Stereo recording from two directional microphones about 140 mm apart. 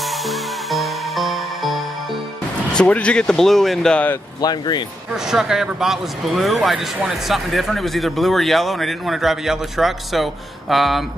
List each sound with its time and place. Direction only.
0.0 s music: centre (ahead or behind)
2.7 s speech: 5° left (ahead or behind)
4.4 s speech: 30° left (ahead or behind)
5.1 s speech: 5° right (ahead or behind)